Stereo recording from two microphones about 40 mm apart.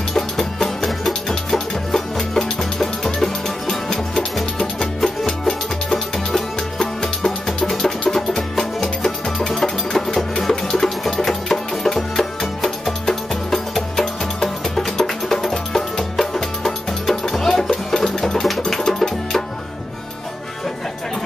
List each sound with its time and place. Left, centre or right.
0.1 s music: centre
9.5 s music: centre